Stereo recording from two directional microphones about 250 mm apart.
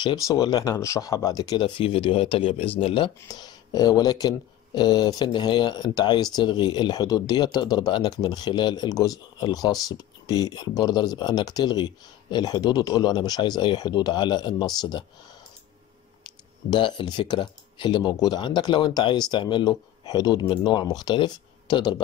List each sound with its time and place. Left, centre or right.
0.0 s speech: centre
16.3 s speech: centre